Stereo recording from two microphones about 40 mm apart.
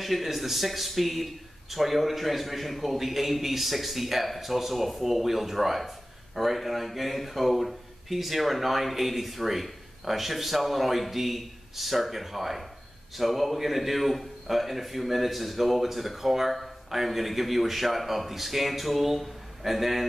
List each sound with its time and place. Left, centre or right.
0.0 s speech: centre